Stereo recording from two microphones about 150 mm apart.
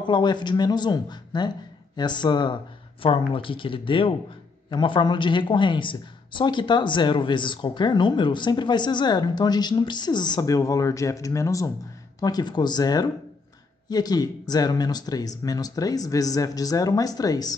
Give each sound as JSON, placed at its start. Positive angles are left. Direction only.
{"t": 0.0, "sound": "speech", "side_deg": 30}